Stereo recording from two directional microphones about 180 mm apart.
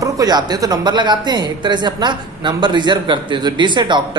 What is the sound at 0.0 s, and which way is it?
Speech, 20° right (ahead or behind).